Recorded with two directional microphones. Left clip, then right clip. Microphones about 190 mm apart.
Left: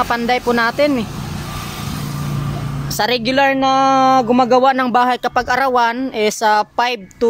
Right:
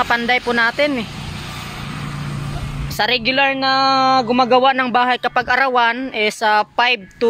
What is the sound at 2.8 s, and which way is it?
Speech, 15° left (ahead or behind).